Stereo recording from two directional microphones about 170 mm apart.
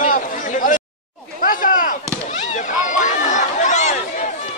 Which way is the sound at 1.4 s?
55° left (ahead or behind).